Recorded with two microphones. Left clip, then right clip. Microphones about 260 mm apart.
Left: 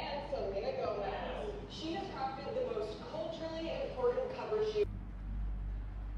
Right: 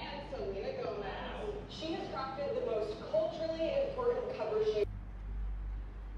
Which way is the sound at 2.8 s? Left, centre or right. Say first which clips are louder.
Right 6 dB; centre.